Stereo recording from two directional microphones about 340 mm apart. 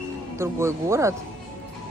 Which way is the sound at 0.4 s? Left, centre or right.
Centre.